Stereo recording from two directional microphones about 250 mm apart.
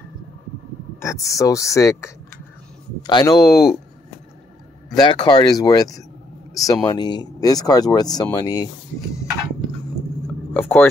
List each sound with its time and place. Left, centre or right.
0.9 s speech: centre
4.9 s speech: centre
10.5 s speech: centre